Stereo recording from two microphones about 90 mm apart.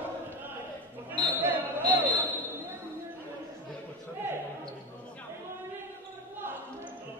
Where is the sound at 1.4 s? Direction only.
20° right (ahead or behind).